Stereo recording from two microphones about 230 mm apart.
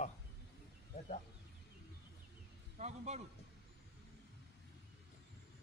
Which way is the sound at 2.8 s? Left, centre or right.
Right.